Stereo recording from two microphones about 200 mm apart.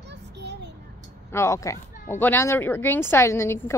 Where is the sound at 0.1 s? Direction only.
60° right (ahead or behind).